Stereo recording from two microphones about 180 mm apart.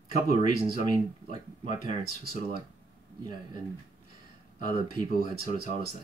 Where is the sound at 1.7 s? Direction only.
45° left (ahead or behind).